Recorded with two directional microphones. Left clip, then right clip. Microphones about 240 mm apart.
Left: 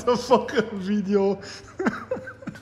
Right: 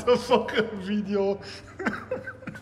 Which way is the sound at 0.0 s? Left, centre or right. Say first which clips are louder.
Left 1 dB; centre.